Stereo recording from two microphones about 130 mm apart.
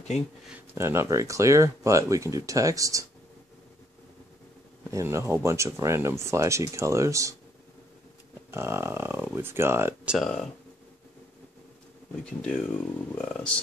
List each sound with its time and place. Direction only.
0.7 s speech: 20° right (ahead or behind)
4.9 s speech: 20° right (ahead or behind)
8.5 s speech: 20° right (ahead or behind)
10.0 s speech: centre (ahead or behind)
12.4 s speech: 5° left (ahead or behind)